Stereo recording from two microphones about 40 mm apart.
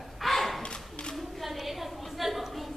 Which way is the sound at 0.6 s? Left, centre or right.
Left.